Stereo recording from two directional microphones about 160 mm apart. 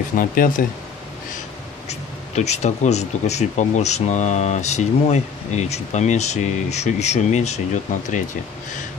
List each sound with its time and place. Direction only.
0.1 s speech: 60° left (ahead or behind)
1.9 s speech: 45° left (ahead or behind)